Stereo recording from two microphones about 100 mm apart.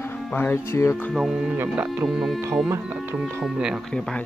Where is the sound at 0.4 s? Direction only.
25° left (ahead or behind).